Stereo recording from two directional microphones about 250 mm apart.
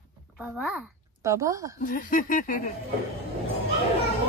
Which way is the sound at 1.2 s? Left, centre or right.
Centre.